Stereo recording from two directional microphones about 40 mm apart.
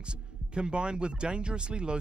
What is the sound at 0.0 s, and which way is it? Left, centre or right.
Speech, right.